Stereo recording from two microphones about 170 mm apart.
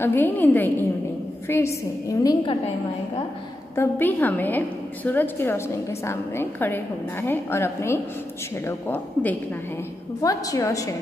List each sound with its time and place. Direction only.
0.0 s a woman's voice: 10° left (ahead or behind)
3.7 s a woman's voice: 15° left (ahead or behind)
10.2 s a woman's voice: 20° left (ahead or behind)